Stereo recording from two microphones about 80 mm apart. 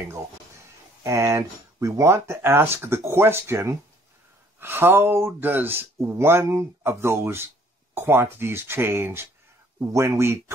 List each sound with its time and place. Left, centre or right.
1.0 s speech: right